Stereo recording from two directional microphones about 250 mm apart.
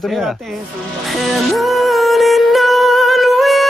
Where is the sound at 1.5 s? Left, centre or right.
Centre.